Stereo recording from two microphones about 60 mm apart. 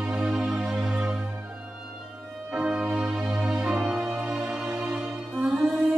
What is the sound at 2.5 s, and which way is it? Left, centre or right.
Music, centre.